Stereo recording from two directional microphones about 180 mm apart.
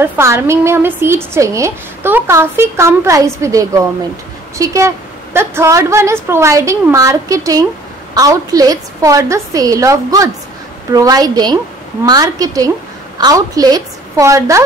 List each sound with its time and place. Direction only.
0.0 s a woman's voice: 15° right (ahead or behind)